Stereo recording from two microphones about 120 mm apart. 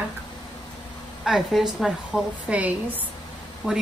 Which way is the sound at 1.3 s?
5° right (ahead or behind).